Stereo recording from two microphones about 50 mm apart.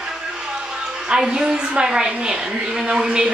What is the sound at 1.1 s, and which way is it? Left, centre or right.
A woman's voice, centre.